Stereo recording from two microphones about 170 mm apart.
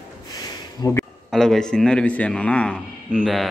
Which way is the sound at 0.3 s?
20° left (ahead or behind).